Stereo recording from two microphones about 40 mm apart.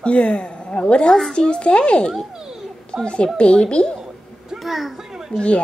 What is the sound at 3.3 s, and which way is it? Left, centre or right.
Speech, left.